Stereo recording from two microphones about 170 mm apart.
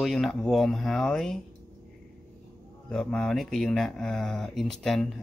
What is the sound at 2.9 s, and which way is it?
Speech, 5° left (ahead or behind).